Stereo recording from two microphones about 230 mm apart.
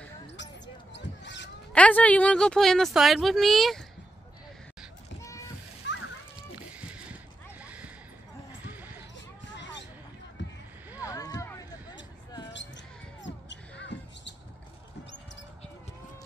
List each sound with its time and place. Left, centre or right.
0.9 s basketball bounce: left
1.7 s a woman's voice: centre
5.2 s rowboat: centre
5.9 s splash: left
6.3 s a sound: centre
8.6 s basketball bounce: centre
9.6 s a sound: left
11.0 s rowboat: centre
12.5 s basketball bounce: left